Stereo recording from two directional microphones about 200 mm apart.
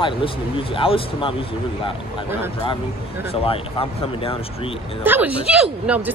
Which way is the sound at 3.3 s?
30° left (ahead or behind).